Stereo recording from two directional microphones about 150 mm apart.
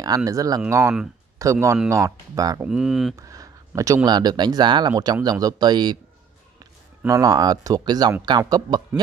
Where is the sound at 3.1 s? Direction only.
20° right (ahead or behind).